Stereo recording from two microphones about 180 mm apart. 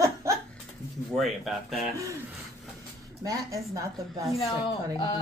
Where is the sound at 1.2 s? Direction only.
Centre (ahead or behind).